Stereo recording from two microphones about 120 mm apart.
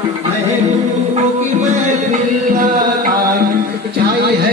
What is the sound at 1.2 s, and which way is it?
Music, 80° right.